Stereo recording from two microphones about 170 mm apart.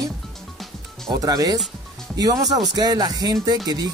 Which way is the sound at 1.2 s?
20° right (ahead or behind).